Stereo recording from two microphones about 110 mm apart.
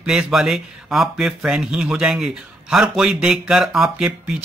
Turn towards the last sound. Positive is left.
turn(degrees=-5)  # may be behind; listen again after turning